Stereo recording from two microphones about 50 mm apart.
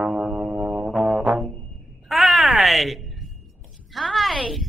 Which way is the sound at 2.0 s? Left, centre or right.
Centre.